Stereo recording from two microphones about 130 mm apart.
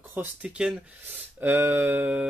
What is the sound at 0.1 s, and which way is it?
Speech, 10° right (ahead or behind).